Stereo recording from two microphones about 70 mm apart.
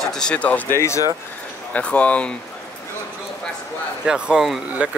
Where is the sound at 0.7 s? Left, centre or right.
Left.